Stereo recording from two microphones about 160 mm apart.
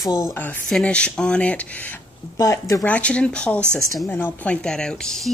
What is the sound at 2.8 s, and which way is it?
Speech, 10° left (ahead or behind).